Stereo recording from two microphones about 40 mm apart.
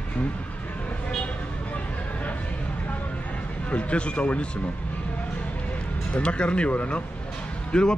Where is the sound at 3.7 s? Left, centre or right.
Left.